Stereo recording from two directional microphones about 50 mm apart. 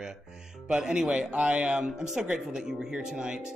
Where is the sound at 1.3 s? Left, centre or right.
Right.